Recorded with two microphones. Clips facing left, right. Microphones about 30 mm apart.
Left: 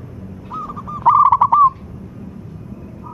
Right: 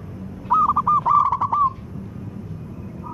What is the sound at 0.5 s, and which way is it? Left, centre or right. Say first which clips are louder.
Owl: right 11 dB; right.